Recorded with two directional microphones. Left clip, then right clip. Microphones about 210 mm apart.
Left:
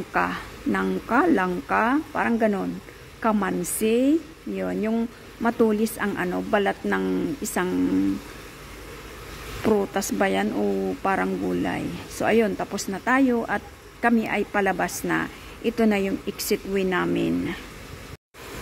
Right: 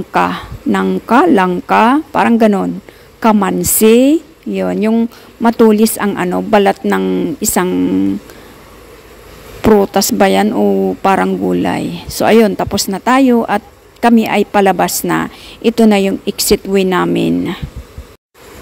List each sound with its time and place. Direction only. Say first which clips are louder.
0.1 s a woman's voice: right 11 dB; 40° right (ahead or behind)
9.6 s a woman's voice: right 13 dB; 40° right (ahead or behind)